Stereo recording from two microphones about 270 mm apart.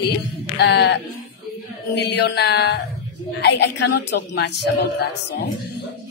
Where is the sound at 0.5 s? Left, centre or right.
Left.